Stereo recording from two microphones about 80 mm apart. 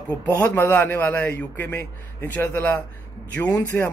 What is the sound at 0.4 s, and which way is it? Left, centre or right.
A man's voice, left.